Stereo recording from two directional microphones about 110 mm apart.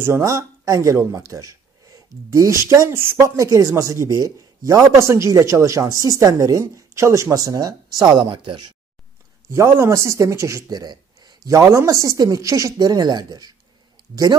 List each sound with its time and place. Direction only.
0.0 s speech: 25° right (ahead or behind); by 8.7 s 45° right (ahead or behind)
9.5 s a woman's voice: 25° right (ahead or behind)